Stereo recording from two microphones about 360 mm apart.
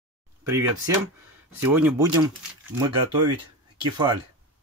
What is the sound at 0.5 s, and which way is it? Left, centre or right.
Speech, centre.